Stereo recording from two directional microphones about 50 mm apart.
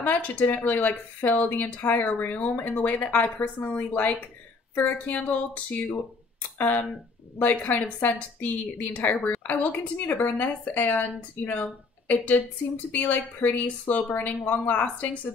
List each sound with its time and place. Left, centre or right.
0.0 s speech: left
12.9 s speech: left